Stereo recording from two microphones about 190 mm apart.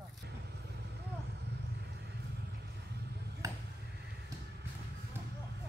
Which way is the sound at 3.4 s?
15° right (ahead or behind).